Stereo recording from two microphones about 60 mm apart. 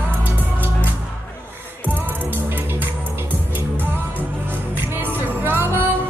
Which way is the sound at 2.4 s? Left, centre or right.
Right.